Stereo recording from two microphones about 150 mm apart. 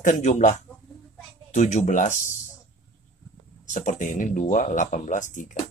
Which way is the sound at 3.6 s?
55° left (ahead or behind).